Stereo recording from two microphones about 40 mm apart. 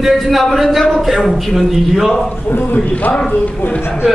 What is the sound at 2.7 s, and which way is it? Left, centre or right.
Speech, left.